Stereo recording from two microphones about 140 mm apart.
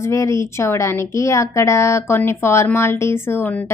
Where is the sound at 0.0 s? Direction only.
20° left (ahead or behind).